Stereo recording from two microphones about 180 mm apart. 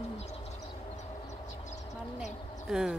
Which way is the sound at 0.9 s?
40° left (ahead or behind).